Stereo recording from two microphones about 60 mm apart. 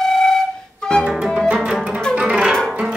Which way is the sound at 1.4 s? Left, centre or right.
Centre.